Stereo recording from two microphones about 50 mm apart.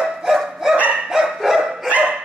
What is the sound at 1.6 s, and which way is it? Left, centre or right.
Dog, right.